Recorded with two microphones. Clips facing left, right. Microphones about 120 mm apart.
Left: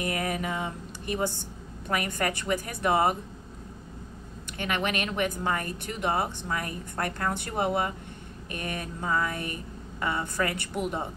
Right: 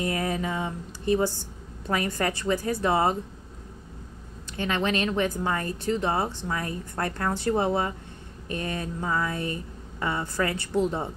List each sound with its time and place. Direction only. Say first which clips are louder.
0.0 s a sound: right 2 dB; 25° right (ahead or behind)
1.9 s a woman's voice: right 2 dB; 25° right (ahead or behind)
4.5 s a woman's voice: right 3 dB; 25° right (ahead or behind)